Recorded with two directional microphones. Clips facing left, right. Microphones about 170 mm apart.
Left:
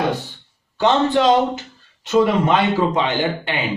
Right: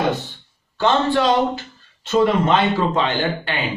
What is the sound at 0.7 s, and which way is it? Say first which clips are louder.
Speech: left 1 dB; 20° left (ahead or behind).